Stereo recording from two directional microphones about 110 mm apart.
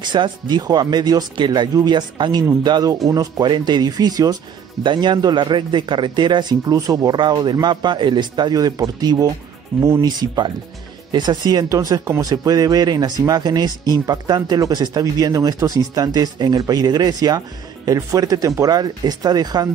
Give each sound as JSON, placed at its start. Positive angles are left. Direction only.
{"t": 0.0, "sound": "speech", "side_deg": -45}
{"t": 3.4, "sound": "a man's voice", "side_deg": -45}
{"t": 9.8, "sound": "speech", "side_deg": -25}
{"t": 10.0, "sound": "speech", "side_deg": -40}